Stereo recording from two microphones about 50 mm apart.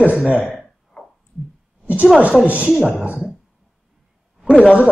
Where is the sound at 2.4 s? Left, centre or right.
Right.